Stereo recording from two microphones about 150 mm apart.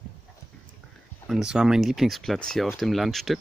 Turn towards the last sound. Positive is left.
turn(degrees=0)  # may be behind; listen again after turning